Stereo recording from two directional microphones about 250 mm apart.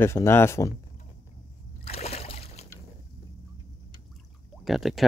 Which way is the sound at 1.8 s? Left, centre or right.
Left.